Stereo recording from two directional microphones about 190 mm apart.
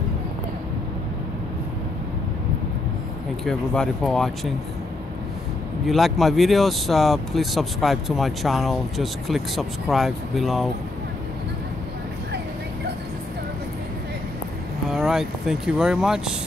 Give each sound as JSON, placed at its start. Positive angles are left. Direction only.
{"t": 3.4, "sound": "speech", "side_deg": 5}
{"t": 5.9, "sound": "speech", "side_deg": 0}
{"t": 14.9, "sound": "speech", "side_deg": 0}